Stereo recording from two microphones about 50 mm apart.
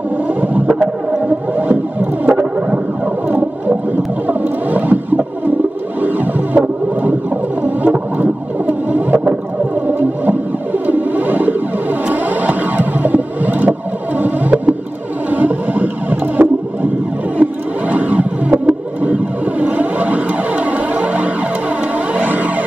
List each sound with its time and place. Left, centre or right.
0.3 s effects unit: right
1.6 s music: right
3.3 s whale vocalization: right
5.9 s music: right
7.6 s whale vocalization: right
9.8 s music: right
17.4 s a sound: right
18.7 s music: right
21.9 s vehicle: right